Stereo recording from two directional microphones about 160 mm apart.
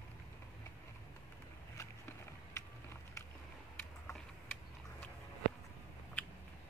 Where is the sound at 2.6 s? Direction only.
20° left (ahead or behind).